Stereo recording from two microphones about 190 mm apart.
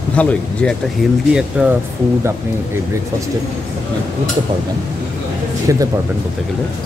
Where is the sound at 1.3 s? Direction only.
5° right (ahead or behind).